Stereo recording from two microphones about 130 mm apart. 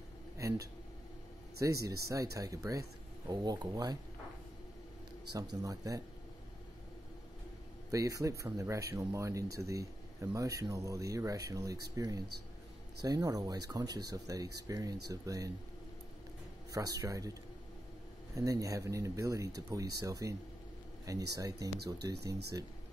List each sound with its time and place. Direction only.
0.4 s a sound: 25° right (ahead or behind)
1.6 s speech: 25° right (ahead or behind)
5.3 s speech: 30° right (ahead or behind)
7.9 s speech: 25° right (ahead or behind)
16.7 s speech: 25° right (ahead or behind)